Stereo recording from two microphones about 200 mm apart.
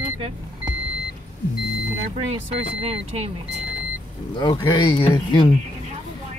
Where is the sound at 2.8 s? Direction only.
30° right (ahead or behind).